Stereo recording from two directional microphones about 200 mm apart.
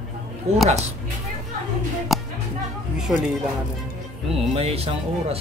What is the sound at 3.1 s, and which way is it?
Speech, centre (ahead or behind).